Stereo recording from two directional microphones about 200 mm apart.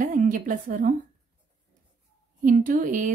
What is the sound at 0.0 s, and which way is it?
Speech, 40° right (ahead or behind).